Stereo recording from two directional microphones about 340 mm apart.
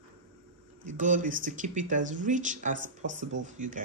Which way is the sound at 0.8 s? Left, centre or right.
Right.